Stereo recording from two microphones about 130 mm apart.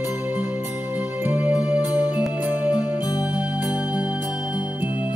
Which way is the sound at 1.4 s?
5° right (ahead or behind).